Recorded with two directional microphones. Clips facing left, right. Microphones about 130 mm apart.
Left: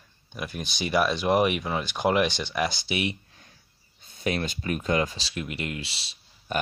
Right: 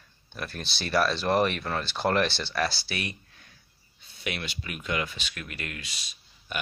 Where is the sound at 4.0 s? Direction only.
45° left (ahead or behind).